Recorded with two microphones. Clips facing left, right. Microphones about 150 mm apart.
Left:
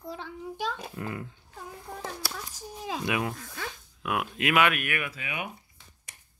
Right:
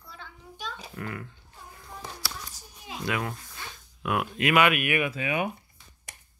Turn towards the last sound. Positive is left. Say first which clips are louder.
# right 8 dB
turn(degrees=-35)  # may be behind; listen again after turning